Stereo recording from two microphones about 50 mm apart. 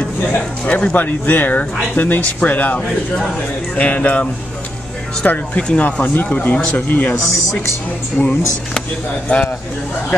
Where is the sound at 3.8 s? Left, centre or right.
Left.